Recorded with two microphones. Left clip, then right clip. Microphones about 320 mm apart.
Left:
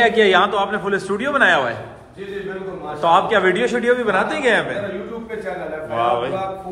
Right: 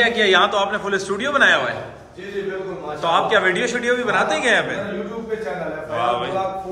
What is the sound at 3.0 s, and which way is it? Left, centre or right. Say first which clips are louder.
A man's voice: left 2 dB; centre.